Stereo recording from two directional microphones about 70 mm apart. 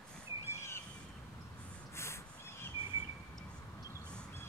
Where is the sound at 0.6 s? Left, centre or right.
Left.